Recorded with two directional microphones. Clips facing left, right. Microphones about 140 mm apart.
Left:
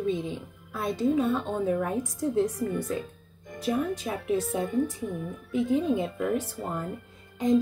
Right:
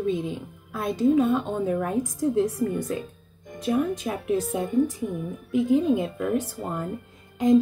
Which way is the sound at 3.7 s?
20° right (ahead or behind).